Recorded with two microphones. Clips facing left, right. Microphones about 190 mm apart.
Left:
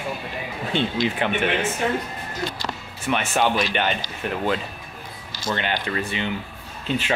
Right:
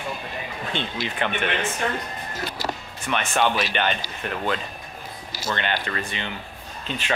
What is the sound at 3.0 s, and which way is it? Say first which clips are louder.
Speech: left 1 dB; 5° left (ahead or behind).